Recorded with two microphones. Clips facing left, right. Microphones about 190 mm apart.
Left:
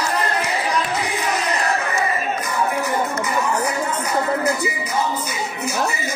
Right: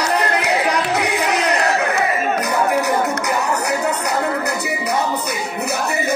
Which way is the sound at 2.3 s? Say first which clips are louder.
Right 4 dB; 70° right (ahead or behind).